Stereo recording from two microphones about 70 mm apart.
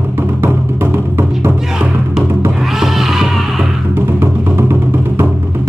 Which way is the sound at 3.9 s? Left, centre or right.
Right.